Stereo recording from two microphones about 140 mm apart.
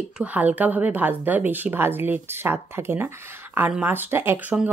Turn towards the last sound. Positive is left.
turn(degrees=-10)  # may be behind; listen again after turning